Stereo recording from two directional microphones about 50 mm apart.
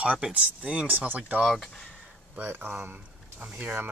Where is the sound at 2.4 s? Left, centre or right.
Right.